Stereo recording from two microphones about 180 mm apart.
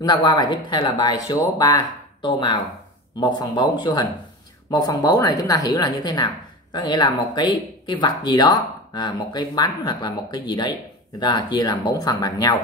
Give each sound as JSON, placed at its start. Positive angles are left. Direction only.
{"t": 0.0, "sound": "a woman's voice", "side_deg": 25}